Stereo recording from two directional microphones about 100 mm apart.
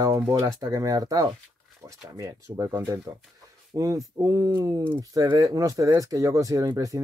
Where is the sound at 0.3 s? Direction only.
35° right (ahead or behind).